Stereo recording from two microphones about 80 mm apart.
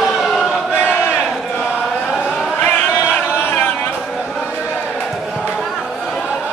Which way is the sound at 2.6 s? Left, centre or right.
Left.